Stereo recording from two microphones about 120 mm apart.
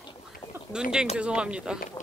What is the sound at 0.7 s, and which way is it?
Speech, 5° right (ahead or behind).